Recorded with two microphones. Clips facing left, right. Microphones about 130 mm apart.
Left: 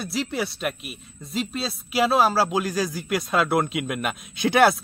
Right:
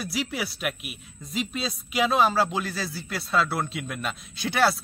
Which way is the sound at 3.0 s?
15° left (ahead or behind).